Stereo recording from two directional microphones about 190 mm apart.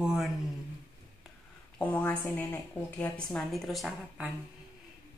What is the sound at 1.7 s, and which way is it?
A woman's voice, 10° left (ahead or behind).